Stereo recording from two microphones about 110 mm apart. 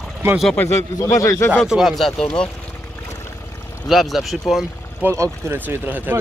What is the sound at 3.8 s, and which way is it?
Speech, centre (ahead or behind).